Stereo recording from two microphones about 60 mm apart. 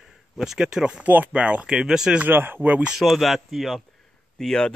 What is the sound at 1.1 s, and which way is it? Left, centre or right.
Speech, right.